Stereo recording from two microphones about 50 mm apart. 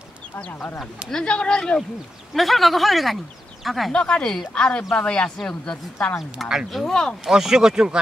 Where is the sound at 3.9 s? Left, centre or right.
Centre.